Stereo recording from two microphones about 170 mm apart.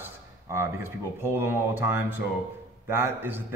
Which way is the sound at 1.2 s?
15° right (ahead or behind).